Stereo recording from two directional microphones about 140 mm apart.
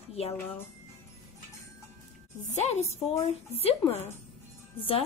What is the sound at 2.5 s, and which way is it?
A woman's voice, 50° left (ahead or behind).